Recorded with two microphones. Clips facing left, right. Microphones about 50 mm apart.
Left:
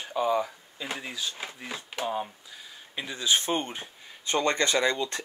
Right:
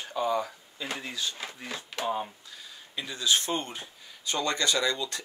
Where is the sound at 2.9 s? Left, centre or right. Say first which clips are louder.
Left 1 dB; left.